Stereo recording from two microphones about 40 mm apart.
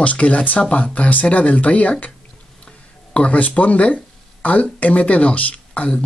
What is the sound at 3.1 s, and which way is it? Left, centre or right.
Speech, left.